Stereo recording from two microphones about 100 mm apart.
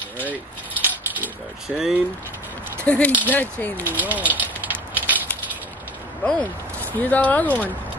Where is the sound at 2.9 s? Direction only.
15° left (ahead or behind).